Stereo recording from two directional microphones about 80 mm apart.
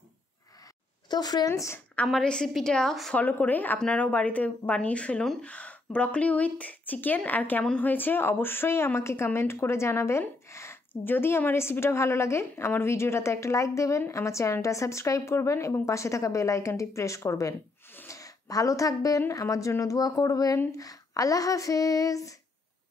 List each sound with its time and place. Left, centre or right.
1.1 s speech: left
1.5 s a woman's voice: left
2.2 s a woman's voice: centre
3.2 s a woman's voice: left